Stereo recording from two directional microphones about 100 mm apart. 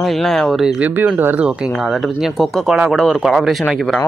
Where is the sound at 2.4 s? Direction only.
Centre (ahead or behind).